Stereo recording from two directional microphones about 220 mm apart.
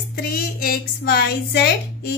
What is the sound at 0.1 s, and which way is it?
A woman's voice, 45° left (ahead or behind).